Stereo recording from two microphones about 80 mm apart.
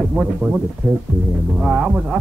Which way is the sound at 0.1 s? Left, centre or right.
Centre.